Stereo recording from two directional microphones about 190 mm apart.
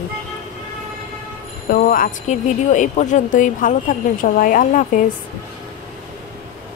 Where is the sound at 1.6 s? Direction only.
50° left (ahead or behind).